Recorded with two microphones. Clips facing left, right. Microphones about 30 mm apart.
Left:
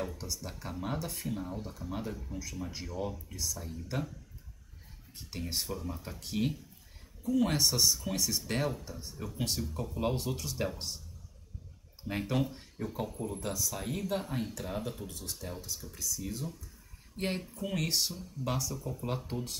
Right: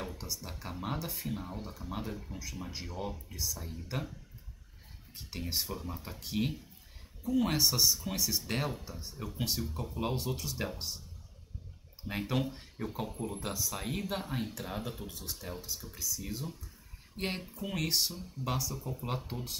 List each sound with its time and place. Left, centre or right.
0.2 s speech: centre
1.3 s speech: centre
3.3 s speech: centre
3.6 s speech: centre
5.1 s speech: centre
5.7 s speech: centre
12.0 s speech: centre
16.3 s speech: right
17.6 s speech: centre